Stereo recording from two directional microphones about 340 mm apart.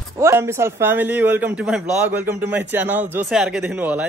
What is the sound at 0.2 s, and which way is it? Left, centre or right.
A man's voice, centre.